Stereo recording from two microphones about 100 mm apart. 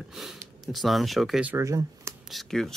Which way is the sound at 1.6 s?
30° right (ahead or behind).